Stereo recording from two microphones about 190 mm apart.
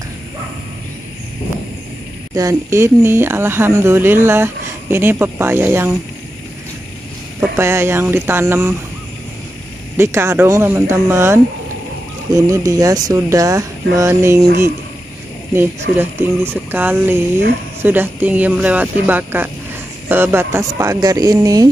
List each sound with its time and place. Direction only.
2.3 s speech: 15° right (ahead or behind)
7.3 s speech: 15° right (ahead or behind)
9.9 s speech: 15° right (ahead or behind)
16.0 s speech: 10° right (ahead or behind)